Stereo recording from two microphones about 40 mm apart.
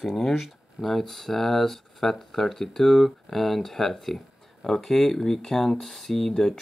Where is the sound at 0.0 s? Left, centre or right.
Centre.